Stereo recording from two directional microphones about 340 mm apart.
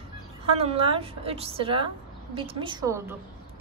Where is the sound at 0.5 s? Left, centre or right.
Centre.